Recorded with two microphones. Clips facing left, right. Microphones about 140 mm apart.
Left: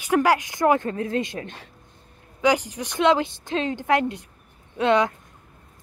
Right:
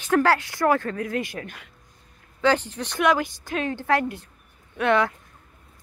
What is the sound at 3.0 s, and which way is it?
Speech, 25° left (ahead or behind).